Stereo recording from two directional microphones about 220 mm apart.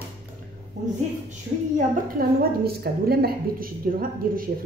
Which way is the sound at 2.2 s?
45° right (ahead or behind).